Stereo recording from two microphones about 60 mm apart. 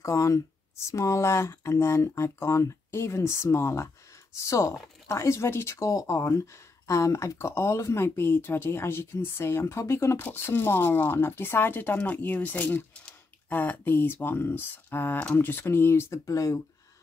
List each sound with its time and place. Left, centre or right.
0.0 s speech: left
4.4 s speech: left